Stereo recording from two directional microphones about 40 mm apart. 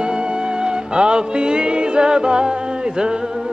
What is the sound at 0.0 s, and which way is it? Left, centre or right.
Music, right.